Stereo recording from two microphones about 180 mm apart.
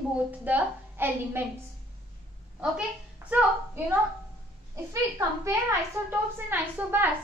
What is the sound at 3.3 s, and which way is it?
Speech, 10° right (ahead or behind).